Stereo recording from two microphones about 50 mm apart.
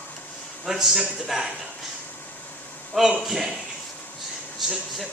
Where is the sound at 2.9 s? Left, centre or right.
Centre.